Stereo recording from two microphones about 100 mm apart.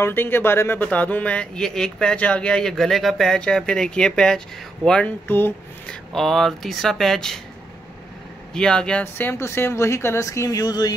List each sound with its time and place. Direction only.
0.0 s speech: 20° left (ahead or behind); by 7.3 s 5° left (ahead or behind)
8.5 s speech: 5° left (ahead or behind)
9.0 s speech: 25° left (ahead or behind)